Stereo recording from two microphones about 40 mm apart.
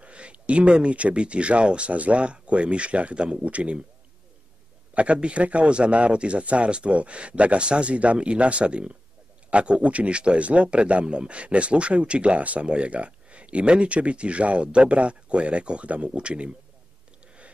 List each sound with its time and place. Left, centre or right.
0.0 s speech: right
4.9 s speech: right